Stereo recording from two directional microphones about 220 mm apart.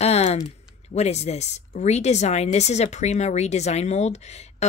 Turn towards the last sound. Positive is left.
turn(degrees=30)  # may be behind; listen again after turning